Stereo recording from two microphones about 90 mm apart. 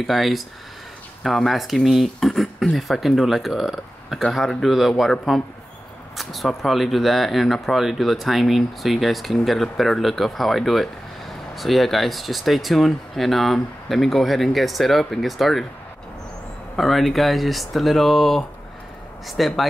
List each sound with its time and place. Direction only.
0.0 s speech: centre (ahead or behind)
16.7 s speech: centre (ahead or behind)